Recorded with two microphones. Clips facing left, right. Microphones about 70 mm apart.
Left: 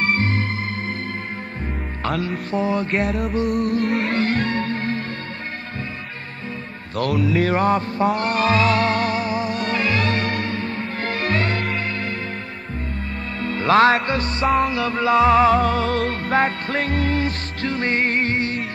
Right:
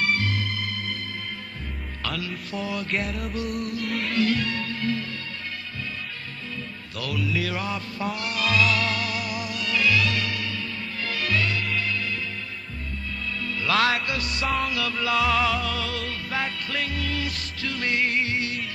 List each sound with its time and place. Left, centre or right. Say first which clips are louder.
0.0 s organ: left 5 dB; left
2.0 s music: left 8 dB; left
2.9 s music: left 7 dB; left
7.0 s music: left 9 dB; left
13.4 s music: left 8 dB; left